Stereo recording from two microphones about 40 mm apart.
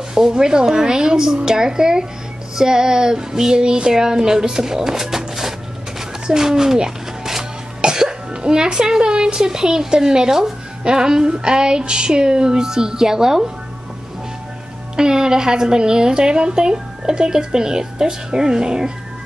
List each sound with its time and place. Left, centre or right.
0.1 s music: centre
5.9 s a sound: centre
7.8 s a woman's voice: centre
15.0 s a woman's voice: centre